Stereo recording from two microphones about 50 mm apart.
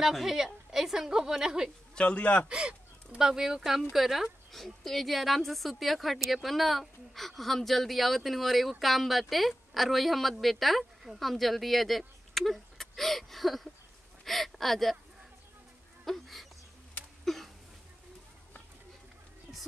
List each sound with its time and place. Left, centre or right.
0.0 s a woman's voice: centre
2.0 s a man's voice: left
2.4 s speech: centre
16.1 s speech: centre
17.2 s a sound: centre